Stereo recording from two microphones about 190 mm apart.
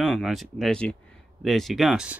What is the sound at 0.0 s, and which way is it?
Speech, centre (ahead or behind).